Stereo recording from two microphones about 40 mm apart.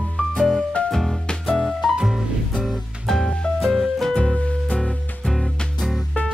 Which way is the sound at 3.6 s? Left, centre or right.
Centre.